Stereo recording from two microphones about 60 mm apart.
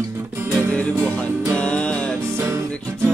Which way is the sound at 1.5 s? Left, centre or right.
Left.